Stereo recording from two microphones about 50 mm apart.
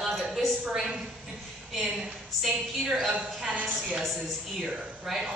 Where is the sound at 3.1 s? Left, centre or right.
Right.